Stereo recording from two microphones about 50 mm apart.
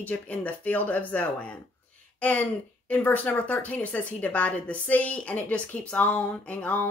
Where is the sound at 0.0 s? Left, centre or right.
Left.